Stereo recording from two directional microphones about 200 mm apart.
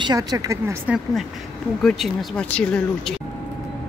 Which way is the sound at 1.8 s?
Centre (ahead or behind).